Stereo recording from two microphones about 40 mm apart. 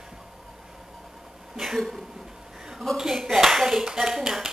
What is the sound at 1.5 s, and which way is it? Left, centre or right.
Speech, centre.